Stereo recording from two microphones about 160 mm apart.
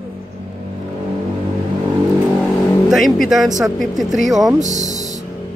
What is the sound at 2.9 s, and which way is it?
Speech, centre (ahead or behind).